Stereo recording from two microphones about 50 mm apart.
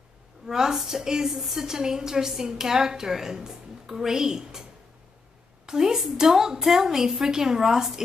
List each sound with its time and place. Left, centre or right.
0.5 s a woman's voice: centre
5.7 s a woman's voice: centre